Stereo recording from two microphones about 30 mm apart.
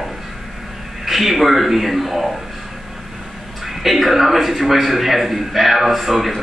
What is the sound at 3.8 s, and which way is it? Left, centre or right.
A man's voice, centre.